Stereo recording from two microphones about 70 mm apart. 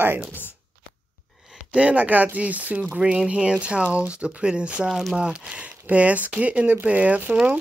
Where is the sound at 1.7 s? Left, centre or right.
Centre.